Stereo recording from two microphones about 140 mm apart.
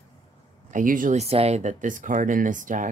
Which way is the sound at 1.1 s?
50° right (ahead or behind).